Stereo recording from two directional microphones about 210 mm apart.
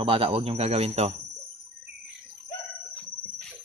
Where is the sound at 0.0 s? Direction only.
25° right (ahead or behind).